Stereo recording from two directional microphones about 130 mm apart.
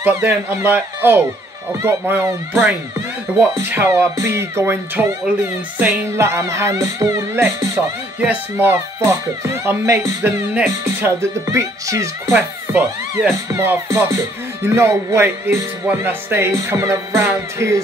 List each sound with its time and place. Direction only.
0.0 s speech: 15° right (ahead or behind)
1.8 s music: 20° right (ahead or behind)